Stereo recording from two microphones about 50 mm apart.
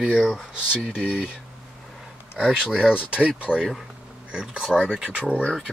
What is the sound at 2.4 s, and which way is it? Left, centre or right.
Speech, centre.